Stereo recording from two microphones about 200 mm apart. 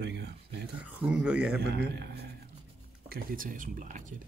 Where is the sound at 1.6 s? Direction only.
55° right (ahead or behind).